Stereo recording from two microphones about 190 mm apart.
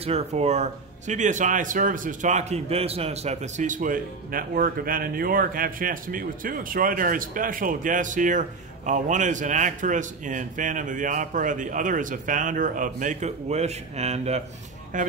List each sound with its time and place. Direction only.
0.0 s speech: 35° right (ahead or behind)